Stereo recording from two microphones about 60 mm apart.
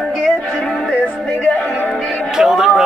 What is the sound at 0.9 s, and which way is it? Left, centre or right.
Music, centre.